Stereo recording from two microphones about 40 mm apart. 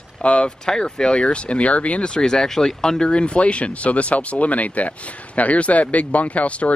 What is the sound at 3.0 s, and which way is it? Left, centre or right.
Speech, left.